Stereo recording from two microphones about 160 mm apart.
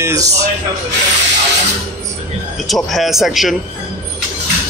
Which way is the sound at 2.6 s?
Centre (ahead or behind).